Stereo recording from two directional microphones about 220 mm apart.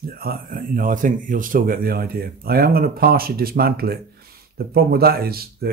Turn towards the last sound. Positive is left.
turn(degrees=-45)  # may be behind; listen again after turning